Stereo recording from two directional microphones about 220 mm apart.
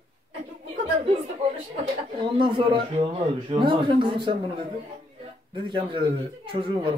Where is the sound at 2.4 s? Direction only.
25° right (ahead or behind).